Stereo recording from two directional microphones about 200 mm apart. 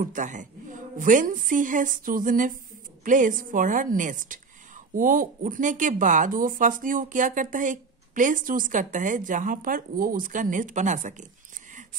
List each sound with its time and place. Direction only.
0.0 s a woman's voice: 40° right (ahead or behind)